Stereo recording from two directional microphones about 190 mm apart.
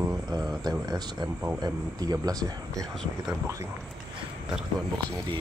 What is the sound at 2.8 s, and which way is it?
Speech, centre (ahead or behind).